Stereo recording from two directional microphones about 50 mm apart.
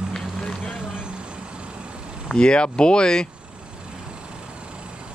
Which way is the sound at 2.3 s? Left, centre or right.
Centre.